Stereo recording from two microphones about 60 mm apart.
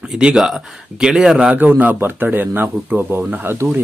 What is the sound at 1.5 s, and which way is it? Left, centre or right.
A man's voice, right.